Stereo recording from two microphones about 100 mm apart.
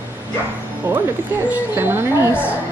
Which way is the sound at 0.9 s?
20° right (ahead or behind).